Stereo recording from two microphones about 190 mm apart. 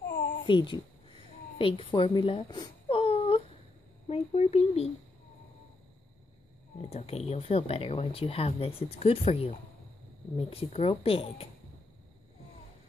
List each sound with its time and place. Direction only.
0.5 s a sound: 25° left (ahead or behind)
4.1 s speech: 35° left (ahead or behind)
6.9 s speech: 35° left (ahead or behind)